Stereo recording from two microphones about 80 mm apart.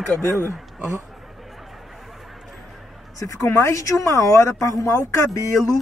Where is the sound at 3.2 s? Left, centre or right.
Left.